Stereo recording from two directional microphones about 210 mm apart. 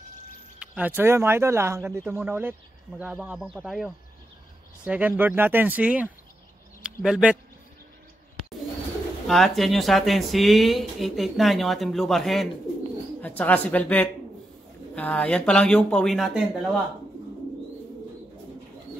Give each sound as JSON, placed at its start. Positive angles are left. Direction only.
{"t": 0.6, "sound": "speech", "side_deg": -5}
{"t": 9.3, "sound": "speech", "side_deg": 0}